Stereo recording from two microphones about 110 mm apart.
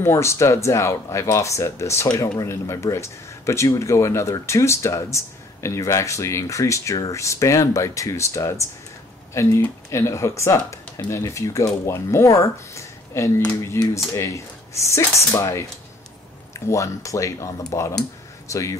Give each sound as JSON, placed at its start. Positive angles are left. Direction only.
{"t": 0.0, "sound": "speech", "side_deg": 25}